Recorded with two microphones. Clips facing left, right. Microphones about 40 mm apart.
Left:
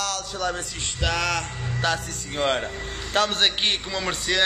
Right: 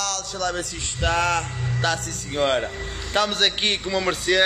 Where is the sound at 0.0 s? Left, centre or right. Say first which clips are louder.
Right 1 dB; centre.